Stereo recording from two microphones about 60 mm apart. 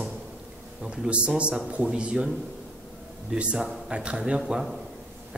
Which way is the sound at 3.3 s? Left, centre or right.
Centre.